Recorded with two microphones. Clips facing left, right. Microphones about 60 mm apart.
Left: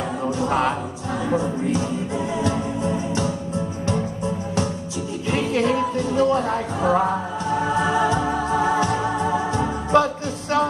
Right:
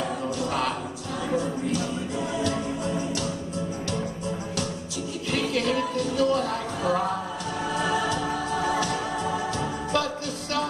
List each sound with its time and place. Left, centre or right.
0.4 s music: left
5.3 s music: left